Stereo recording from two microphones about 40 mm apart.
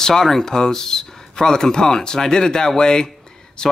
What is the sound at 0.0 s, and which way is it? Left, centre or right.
Speech, centre.